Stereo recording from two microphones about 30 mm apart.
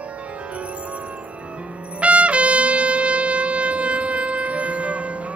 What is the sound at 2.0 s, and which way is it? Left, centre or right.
Trumpet, right.